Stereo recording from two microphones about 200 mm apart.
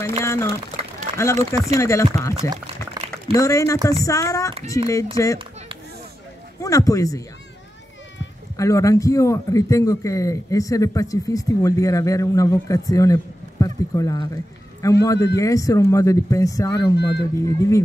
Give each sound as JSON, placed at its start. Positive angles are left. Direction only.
{"t": 0.2, "sound": "a man's voice", "side_deg": 15}
{"t": 2.5, "sound": "a sound", "side_deg": -20}
{"t": 3.3, "sound": "a man's voice", "side_deg": 15}
{"t": 6.6, "sound": "a man's voice", "side_deg": 15}
{"t": 8.5, "sound": "a man's voice", "side_deg": 15}
{"t": 16.9, "sound": "speech", "side_deg": 55}
{"t": 17.5, "sound": "a man's voice", "side_deg": 15}